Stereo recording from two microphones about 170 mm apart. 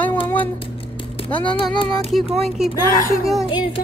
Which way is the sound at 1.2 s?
30° left (ahead or behind).